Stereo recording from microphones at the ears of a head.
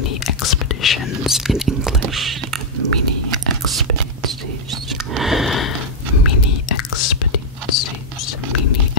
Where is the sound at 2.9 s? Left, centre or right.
Right.